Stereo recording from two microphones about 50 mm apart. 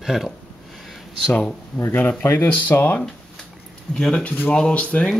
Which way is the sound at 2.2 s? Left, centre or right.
Left.